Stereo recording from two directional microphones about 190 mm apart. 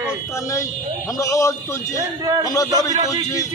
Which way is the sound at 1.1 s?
15° left (ahead or behind).